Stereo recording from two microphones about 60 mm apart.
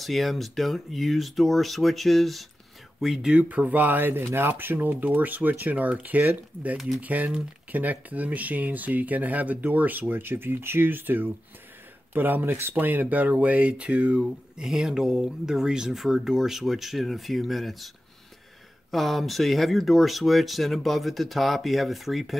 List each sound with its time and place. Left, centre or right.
0.0 s speech: centre
3.4 s speech: right
14.6 s speech: centre